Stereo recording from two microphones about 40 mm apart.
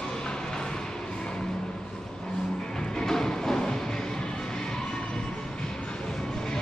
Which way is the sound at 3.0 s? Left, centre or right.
Centre.